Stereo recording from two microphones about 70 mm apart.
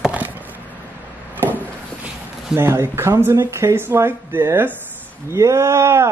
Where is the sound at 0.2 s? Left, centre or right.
Right.